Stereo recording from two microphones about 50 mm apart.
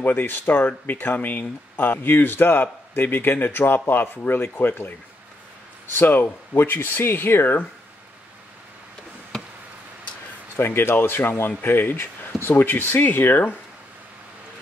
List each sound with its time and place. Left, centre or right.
0.0 s speech: left
5.9 s speech: left
9.3 s a sound: centre
10.5 s speech: left